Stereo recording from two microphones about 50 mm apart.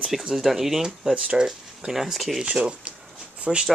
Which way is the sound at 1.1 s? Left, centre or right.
Right.